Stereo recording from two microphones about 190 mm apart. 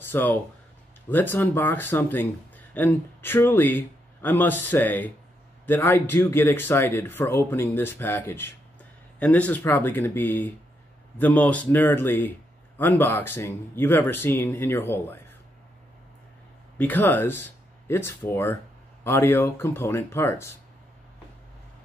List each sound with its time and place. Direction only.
0.0 s speech: 10° left (ahead or behind)
16.7 s speech: 10° left (ahead or behind)